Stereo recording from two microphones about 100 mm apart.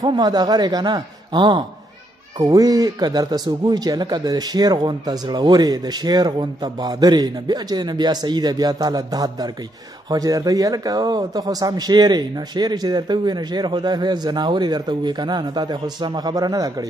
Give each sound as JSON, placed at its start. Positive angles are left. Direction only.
{"t": 0.0, "sound": "speech", "side_deg": -45}